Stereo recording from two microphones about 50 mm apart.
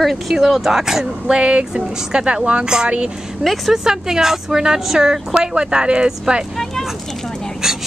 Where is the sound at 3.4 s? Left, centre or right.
Centre.